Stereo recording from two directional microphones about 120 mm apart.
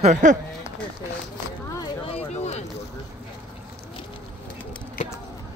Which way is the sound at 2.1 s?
60° left (ahead or behind).